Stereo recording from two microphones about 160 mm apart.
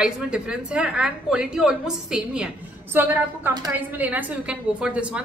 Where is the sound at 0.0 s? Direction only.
5° right (ahead or behind).